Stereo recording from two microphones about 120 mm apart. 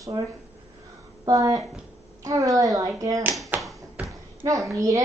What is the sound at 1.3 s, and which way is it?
A woman's voice, 30° right (ahead or behind).